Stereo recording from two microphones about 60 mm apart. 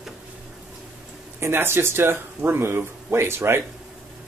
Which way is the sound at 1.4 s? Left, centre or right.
Right.